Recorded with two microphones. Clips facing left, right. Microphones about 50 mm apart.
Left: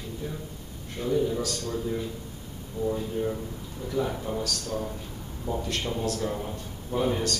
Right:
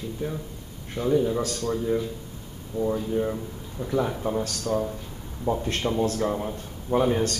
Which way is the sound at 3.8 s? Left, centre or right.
Right.